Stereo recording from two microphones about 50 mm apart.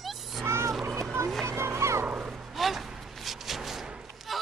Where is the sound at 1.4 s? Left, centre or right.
Right.